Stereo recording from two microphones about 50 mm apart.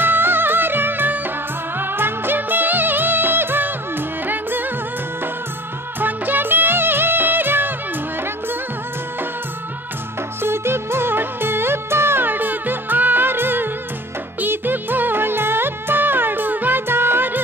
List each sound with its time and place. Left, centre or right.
0.0 s music: right
5.9 s music of bollywood: right
10.4 s music: right